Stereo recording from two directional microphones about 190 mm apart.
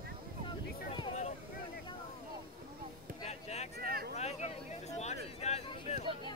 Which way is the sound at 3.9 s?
50° right (ahead or behind).